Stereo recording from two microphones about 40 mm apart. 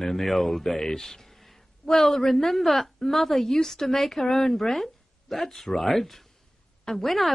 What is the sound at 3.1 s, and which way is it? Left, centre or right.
A woman's voice, centre.